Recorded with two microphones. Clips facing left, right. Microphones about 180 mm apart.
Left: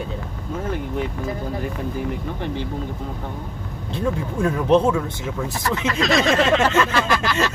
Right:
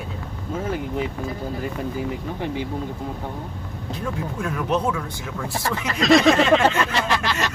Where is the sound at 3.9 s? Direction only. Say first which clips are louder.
Left 5 dB; 30° left (ahead or behind).